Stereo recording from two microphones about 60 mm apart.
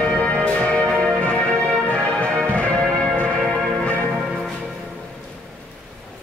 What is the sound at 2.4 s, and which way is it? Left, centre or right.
Change ringing, centre.